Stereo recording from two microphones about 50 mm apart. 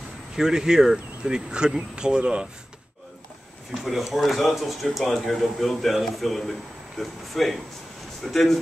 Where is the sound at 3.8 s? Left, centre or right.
Centre.